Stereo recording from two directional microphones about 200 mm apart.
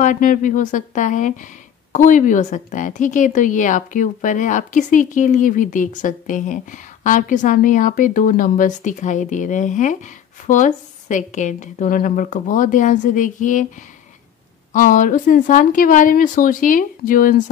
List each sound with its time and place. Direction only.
0.0 s a woman's voice: 40° left (ahead or behind)
14.7 s a woman's voice: 40° left (ahead or behind)